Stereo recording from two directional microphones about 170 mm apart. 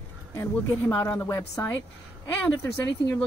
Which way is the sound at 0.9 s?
10° left (ahead or behind).